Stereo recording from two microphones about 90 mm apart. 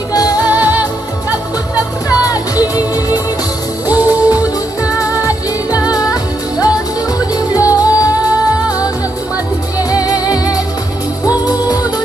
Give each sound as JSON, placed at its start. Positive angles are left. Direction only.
{"t": 0.1, "sound": "music", "side_deg": 45}
{"t": 0.4, "sound": "music", "side_deg": -20}
{"t": 1.8, "sound": "music", "side_deg": 40}
{"t": 3.8, "sound": "music", "side_deg": -20}
{"t": 5.9, "sound": "music", "side_deg": 45}
{"t": 7.3, "sound": "music", "side_deg": 40}